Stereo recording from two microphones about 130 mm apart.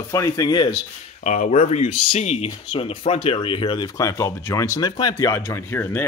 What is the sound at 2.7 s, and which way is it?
Speech, 40° left (ahead or behind).